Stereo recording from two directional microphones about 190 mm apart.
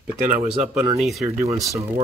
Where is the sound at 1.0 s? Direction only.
Centre (ahead or behind).